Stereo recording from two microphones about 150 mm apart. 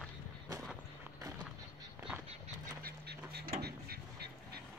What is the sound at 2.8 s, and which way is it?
Duck, 90° right.